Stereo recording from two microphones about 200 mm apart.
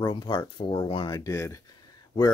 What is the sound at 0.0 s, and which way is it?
Speech, 20° left (ahead or behind).